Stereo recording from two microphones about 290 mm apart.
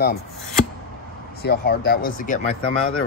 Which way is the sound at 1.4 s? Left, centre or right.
Left.